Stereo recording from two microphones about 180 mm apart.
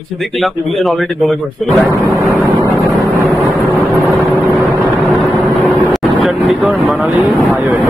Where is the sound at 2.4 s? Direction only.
25° right (ahead or behind).